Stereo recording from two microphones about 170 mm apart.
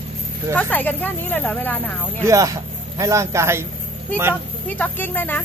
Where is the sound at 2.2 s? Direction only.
20° right (ahead or behind).